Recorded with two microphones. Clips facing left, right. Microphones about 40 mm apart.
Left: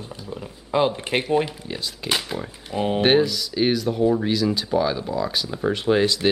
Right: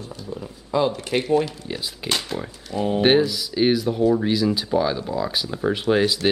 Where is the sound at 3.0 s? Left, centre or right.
Centre.